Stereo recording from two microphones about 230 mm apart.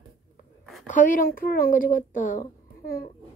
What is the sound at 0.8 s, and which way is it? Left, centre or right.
Speech, left.